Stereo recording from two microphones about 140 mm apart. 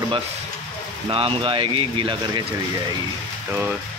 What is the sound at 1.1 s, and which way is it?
Speech, 40° right (ahead or behind).